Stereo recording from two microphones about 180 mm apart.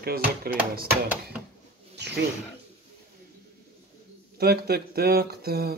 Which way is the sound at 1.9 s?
70° right (ahead or behind).